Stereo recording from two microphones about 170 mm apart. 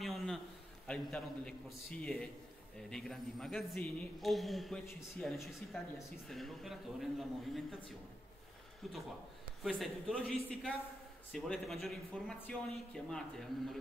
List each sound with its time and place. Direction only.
0.0 s a sound: centre (ahead or behind)
0.8 s a man's voice: 5° left (ahead or behind)
8.8 s a man's voice: centre (ahead or behind)